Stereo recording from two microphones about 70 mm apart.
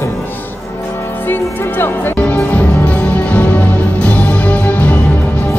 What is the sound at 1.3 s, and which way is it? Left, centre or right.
Speech, left.